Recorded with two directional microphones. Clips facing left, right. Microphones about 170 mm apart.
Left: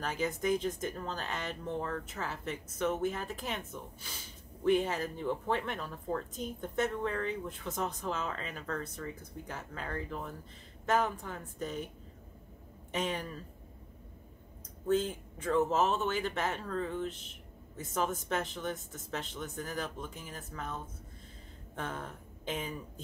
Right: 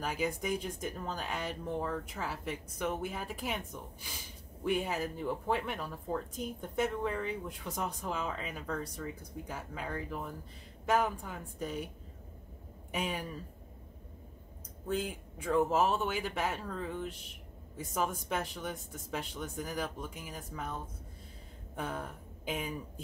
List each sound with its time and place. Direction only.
0.0 s a woman's voice: 10° right (ahead or behind)
12.9 s a woman's voice: 10° right (ahead or behind)
14.9 s a woman's voice: 10° right (ahead or behind)